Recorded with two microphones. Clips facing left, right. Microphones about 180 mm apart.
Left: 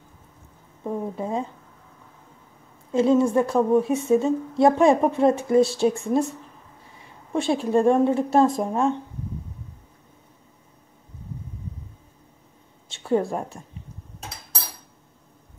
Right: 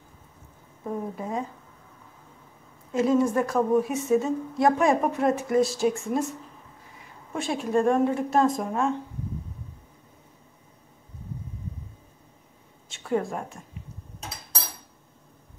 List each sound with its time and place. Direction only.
0.8 s speech: 25° left (ahead or behind)
2.9 s a woman's voice: 30° left (ahead or behind)
12.9 s a woman's voice: 30° left (ahead or behind)